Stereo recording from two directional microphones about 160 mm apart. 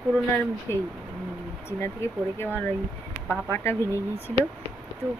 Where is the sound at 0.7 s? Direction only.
15° left (ahead or behind).